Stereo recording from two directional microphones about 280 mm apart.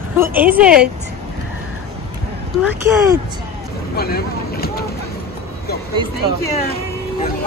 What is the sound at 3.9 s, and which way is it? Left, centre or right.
Vehicle, left.